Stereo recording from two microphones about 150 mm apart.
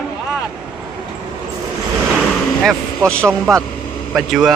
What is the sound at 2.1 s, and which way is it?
Vehicle, 5° left (ahead or behind).